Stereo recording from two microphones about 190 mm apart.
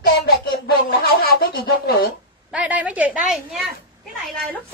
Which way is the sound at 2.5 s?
5° right (ahead or behind).